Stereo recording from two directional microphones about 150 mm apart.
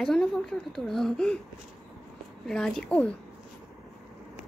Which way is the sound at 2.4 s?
5° left (ahead or behind).